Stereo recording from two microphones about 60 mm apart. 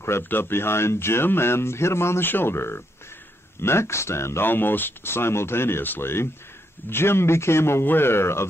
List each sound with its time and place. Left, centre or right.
0.0 s speech: left
4.5 s speech: left